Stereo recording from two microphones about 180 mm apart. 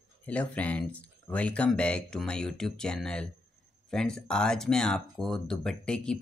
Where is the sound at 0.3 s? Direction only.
10° left (ahead or behind).